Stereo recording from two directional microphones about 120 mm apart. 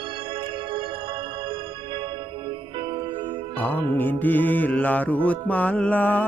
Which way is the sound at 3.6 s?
15° left (ahead or behind).